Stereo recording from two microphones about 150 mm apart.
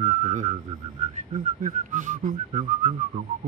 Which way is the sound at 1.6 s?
55° right (ahead or behind).